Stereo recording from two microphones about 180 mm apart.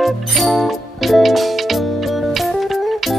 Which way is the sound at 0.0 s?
Centre (ahead or behind).